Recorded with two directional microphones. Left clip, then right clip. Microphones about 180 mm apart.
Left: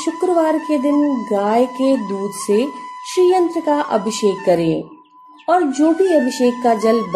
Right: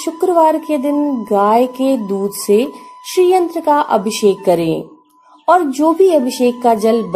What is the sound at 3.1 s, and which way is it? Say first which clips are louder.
Speech: right 2 dB; 20° right (ahead or behind).